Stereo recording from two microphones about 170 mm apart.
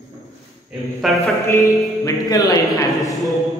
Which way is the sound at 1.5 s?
20° left (ahead or behind).